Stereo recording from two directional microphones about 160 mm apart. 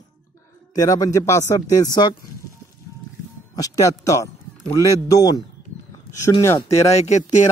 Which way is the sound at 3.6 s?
20° left (ahead or behind).